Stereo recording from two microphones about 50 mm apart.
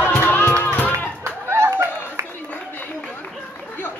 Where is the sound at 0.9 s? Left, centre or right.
Right.